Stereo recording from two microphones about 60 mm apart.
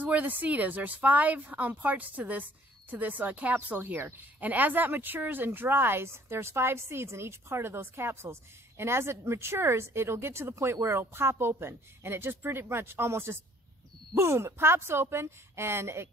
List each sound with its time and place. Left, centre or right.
0.0 s speech: right